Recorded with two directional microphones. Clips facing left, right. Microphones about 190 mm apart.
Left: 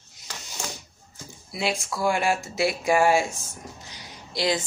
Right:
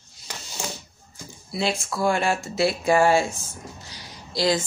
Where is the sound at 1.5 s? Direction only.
10° left (ahead or behind).